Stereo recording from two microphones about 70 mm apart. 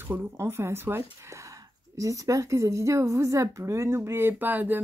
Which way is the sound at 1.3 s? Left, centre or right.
Right.